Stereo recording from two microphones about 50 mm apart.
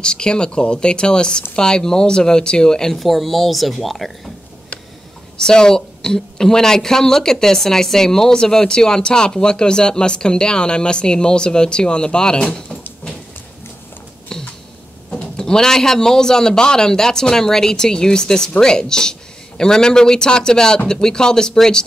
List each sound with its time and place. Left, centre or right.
0.0 s a woman's voice: centre
3.0 s speech: centre
5.4 s a woman's voice: centre
14.3 s a sound: centre
15.0 s a woman's voice: centre